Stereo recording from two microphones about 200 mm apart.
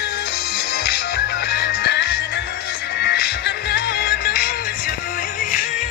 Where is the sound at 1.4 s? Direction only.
55° left (ahead or behind).